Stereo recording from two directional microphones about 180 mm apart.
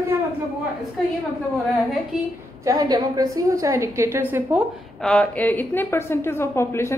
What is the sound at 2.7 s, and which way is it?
A woman's voice, 20° right (ahead or behind).